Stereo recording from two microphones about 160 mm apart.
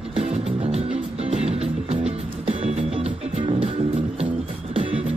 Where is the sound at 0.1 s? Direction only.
40° right (ahead or behind).